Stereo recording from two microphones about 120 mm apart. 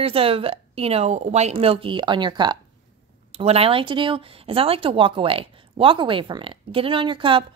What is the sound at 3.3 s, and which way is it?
Speech, 60° right (ahead or behind).